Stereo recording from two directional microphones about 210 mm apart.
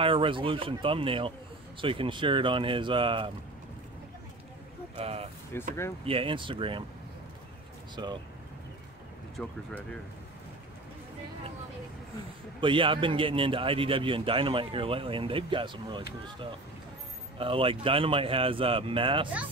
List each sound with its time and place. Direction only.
0.0 s a man's voice: 25° right (ahead or behind)
4.9 s a man's voice: 30° right (ahead or behind)
5.5 s speech: 10° left (ahead or behind)
6.0 s a man's voice: 25° right (ahead or behind)
7.9 s a man's voice: 20° right (ahead or behind)
9.4 s speech: 5° left (ahead or behind)
12.5 s a man's voice: 25° right (ahead or behind)
17.4 s a man's voice: 25° right (ahead or behind)